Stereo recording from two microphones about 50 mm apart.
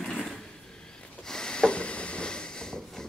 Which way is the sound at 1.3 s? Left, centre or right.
Centre.